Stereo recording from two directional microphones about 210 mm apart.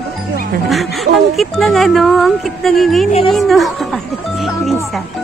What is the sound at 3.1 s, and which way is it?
Speech, 30° left (ahead or behind).